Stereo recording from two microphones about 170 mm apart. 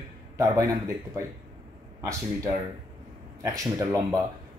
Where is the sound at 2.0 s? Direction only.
20° right (ahead or behind).